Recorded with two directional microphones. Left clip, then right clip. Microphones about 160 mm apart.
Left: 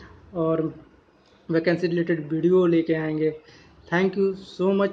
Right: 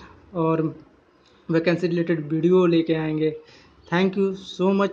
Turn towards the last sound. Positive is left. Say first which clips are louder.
# right 1 dB
turn(degrees=-20)  # may be behind; listen again after turning